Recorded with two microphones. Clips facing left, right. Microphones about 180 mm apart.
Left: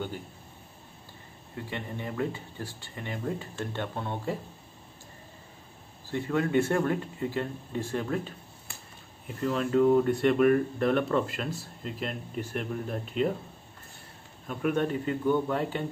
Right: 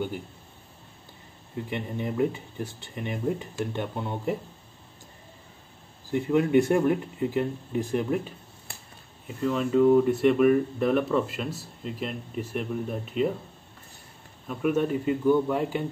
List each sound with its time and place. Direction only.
1.7 s speech: 15° right (ahead or behind)
6.1 s speech: 15° right (ahead or behind)
9.3 s speech: centre (ahead or behind)
14.5 s speech: 5° right (ahead or behind)